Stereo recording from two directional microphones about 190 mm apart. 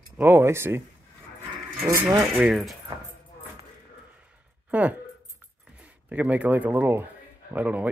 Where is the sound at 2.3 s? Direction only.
Centre (ahead or behind).